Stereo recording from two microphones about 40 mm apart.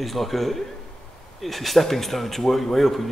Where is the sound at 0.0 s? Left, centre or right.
Centre.